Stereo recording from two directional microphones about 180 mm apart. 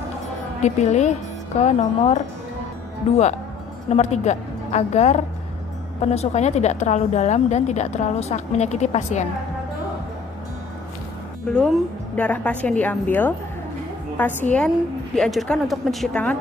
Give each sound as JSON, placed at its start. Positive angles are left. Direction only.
{"t": 0.6, "sound": "a woman's voice", "side_deg": 40}
{"t": 11.5, "sound": "a woman's voice", "side_deg": 5}